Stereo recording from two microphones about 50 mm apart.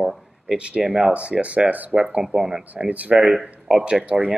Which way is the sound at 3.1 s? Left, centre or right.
Centre.